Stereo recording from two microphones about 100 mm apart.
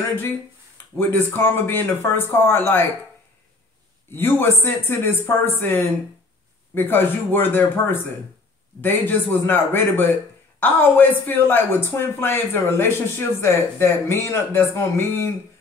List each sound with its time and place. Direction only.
0.9 s speech: 20° left (ahead or behind)
4.1 s speech: 20° left (ahead or behind)